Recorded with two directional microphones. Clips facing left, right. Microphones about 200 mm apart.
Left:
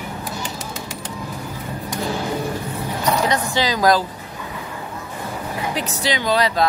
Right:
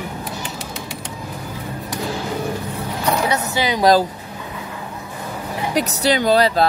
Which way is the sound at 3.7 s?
25° right (ahead or behind).